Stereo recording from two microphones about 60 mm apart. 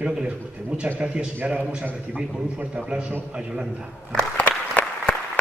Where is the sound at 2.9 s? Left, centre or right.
Centre.